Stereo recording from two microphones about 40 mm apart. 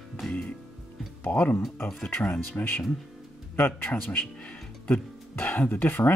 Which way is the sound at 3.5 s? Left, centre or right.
Left.